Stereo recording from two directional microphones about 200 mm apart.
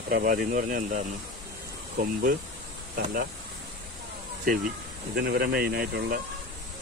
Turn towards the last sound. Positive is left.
turn(degrees=-50)  # may be behind; listen again after turning